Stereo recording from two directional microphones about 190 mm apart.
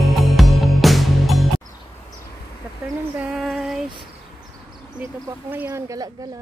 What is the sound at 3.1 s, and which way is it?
Female singing, 5° right (ahead or behind).